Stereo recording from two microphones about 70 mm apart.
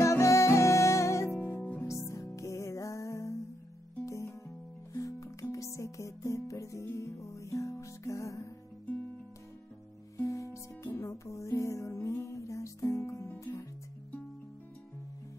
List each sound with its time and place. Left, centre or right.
0.0 s music: left
1.4 s music: left
1.9 s music: left
10.2 s music: left